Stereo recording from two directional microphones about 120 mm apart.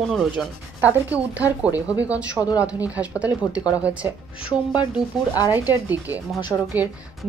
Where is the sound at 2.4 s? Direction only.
30° left (ahead or behind).